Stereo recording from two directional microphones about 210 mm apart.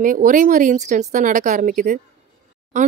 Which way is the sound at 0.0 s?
40° right (ahead or behind).